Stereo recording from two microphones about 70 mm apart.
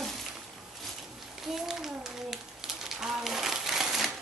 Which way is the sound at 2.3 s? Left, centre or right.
Centre.